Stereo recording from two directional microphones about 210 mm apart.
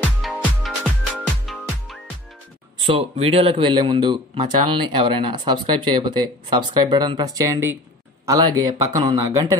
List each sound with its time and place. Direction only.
0.2 s music: centre (ahead or behind)
2.9 s speech: 25° right (ahead or behind)